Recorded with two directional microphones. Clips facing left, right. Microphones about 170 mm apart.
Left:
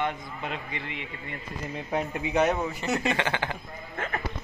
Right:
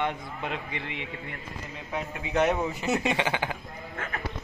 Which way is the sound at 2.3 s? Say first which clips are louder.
Even; centre (ahead or behind).